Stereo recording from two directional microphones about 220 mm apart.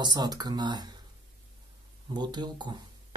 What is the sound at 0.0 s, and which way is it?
Speech, 20° right (ahead or behind).